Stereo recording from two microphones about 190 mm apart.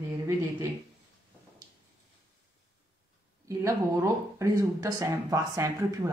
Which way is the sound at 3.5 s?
15° right (ahead or behind).